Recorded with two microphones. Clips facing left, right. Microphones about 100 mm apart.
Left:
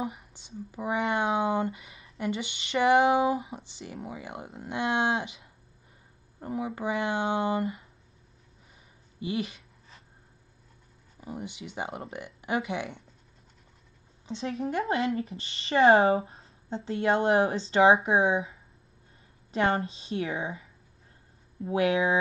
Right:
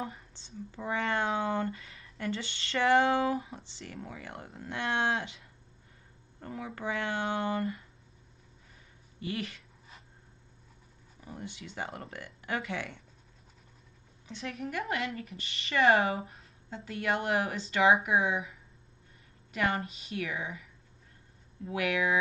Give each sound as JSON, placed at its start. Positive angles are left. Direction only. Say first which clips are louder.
{"t": 0.0, "sound": "speech", "louder": "left 5 dB", "side_deg": 15}
{"t": 9.2, "sound": "speech", "louder": "left 5 dB", "side_deg": 20}
{"t": 11.1, "sound": "speech", "louder": "left 5 dB", "side_deg": 20}
{"t": 14.2, "sound": "speech", "louder": "left 6 dB", "side_deg": 25}